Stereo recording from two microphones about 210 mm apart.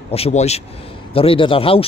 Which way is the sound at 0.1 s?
30° left (ahead or behind).